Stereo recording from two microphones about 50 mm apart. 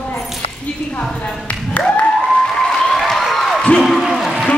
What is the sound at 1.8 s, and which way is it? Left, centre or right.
Applause, left.